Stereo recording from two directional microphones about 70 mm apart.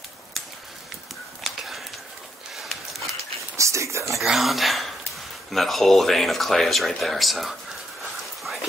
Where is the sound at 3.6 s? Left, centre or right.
Right.